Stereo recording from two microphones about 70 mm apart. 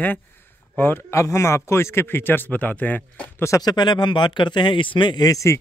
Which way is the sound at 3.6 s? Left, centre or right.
Left.